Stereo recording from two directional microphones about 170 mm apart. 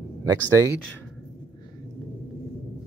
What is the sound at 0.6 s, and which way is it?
Speech, 15° left (ahead or behind).